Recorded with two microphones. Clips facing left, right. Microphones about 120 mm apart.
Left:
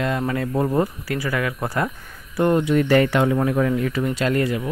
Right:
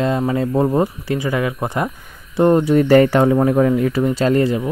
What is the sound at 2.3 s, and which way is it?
Speech, 30° right (ahead or behind).